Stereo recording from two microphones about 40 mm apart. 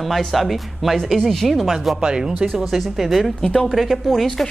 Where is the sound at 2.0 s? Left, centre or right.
Centre.